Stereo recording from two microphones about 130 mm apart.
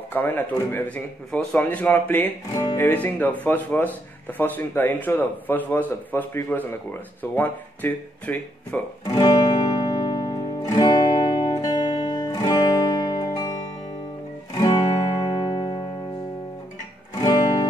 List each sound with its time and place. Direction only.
0.1 s speech: 15° left (ahead or behind)
2.5 s speech: 30° left (ahead or behind)
2.8 s speech: 15° left (ahead or behind)
9.0 s music: 30° left (ahead or behind)
17.1 s music: 30° left (ahead or behind)